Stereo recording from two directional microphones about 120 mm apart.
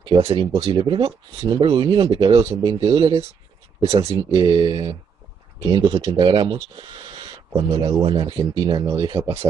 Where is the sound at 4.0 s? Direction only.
25° right (ahead or behind).